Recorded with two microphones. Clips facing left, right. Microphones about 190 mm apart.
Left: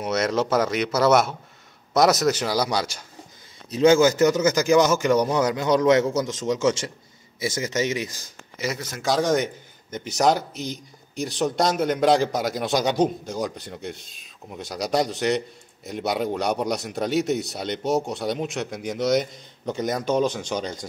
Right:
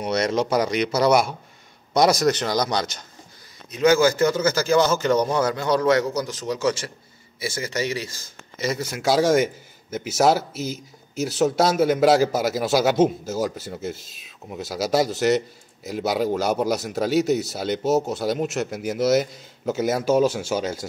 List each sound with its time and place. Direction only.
0.0 s a man's voice: centre (ahead or behind)
3.7 s a man's voice: 25° left (ahead or behind)
8.6 s speech: 5° right (ahead or behind)